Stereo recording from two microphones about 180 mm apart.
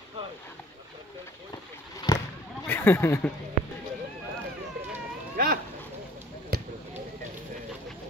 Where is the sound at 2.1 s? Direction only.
20° left (ahead or behind).